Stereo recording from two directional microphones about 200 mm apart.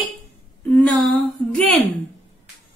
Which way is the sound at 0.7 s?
5° left (ahead or behind).